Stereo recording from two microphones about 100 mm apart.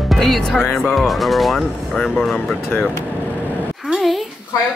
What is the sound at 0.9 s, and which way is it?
Speech, centre (ahead or behind).